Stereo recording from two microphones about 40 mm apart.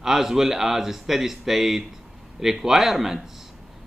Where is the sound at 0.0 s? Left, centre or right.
Centre.